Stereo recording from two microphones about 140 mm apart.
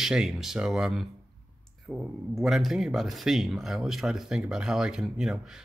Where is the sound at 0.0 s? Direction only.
Centre (ahead or behind).